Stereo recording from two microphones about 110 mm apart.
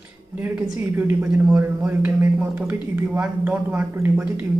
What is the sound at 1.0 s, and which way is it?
A man's voice, 10° right (ahead or behind).